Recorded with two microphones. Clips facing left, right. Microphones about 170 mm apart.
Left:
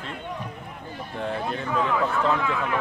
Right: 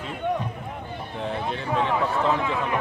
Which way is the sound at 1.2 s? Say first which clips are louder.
Left 1 dB; centre (ahead or behind).